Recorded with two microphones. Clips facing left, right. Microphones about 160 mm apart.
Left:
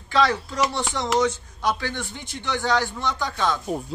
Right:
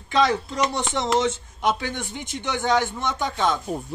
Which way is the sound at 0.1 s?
20° right (ahead or behind).